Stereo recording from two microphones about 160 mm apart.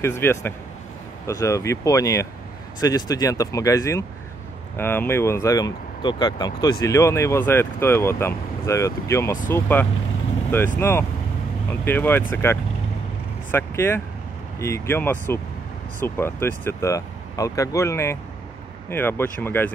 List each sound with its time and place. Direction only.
0.0 s speech: 15° left (ahead or behind)